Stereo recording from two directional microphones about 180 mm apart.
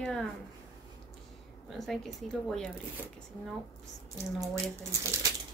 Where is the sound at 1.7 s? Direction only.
Centre (ahead or behind).